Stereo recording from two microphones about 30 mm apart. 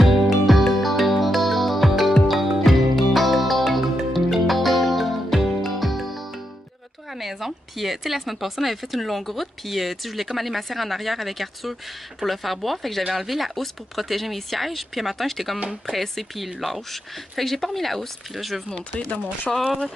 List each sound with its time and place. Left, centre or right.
0.0 s music: centre
7.2 s speech: centre
19.0 s speech: left